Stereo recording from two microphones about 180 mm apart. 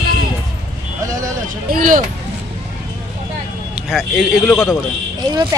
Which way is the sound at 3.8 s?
5° right (ahead or behind).